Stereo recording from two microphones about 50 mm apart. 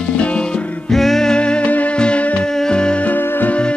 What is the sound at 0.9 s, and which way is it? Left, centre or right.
Music, centre.